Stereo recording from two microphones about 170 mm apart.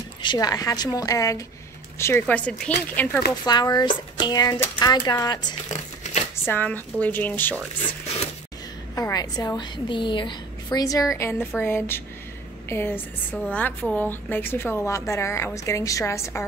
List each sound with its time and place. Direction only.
0.2 s a woman's voice: 25° left (ahead or behind)
3.4 s a woman's voice: 25° left (ahead or behind)
5.7 s a sound: 45° left (ahead or behind)
6.4 s a woman's voice: 10° left (ahead or behind)
8.9 s a woman's voice: 20° left (ahead or behind)